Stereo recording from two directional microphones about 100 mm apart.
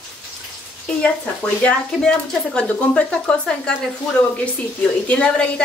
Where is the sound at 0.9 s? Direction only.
10° left (ahead or behind).